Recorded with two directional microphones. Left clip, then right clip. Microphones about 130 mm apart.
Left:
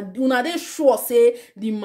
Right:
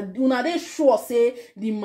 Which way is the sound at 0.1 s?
30° left (ahead or behind).